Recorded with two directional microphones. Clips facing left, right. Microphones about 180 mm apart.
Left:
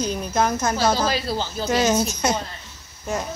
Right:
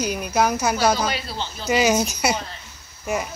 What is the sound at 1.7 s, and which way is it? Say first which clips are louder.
Speech: right 1 dB; 10° right (ahead or behind).